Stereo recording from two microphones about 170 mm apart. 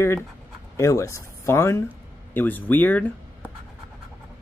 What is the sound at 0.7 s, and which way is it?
Speech, 20° left (ahead or behind).